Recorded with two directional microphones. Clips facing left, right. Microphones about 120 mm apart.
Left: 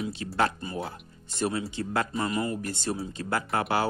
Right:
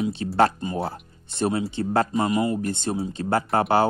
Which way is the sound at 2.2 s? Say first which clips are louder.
Right 6 dB; 15° right (ahead or behind).